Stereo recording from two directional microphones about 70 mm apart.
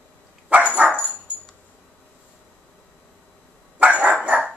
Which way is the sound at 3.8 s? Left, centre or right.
Centre.